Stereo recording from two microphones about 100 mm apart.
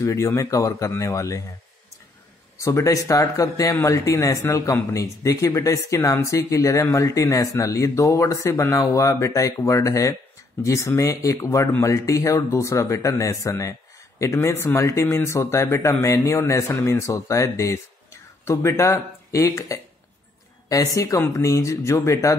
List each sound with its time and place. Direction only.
0.0 s speech: 25° left (ahead or behind)
2.6 s speech: 30° left (ahead or behind)